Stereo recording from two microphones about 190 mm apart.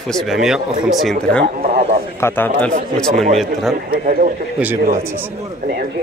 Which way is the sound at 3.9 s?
45° right (ahead or behind).